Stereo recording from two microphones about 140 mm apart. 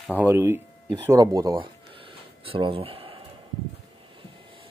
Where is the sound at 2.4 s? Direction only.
40° right (ahead or behind).